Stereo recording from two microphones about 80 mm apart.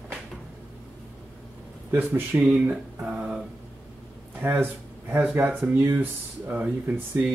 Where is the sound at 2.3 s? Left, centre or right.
Right.